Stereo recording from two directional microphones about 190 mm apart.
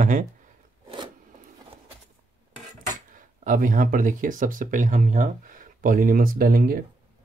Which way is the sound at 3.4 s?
45° right (ahead or behind).